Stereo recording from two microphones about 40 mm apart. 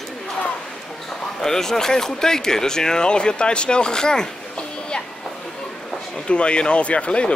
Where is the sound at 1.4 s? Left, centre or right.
Centre.